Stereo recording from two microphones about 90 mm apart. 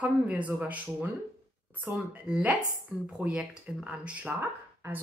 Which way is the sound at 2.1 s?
10° right (ahead or behind).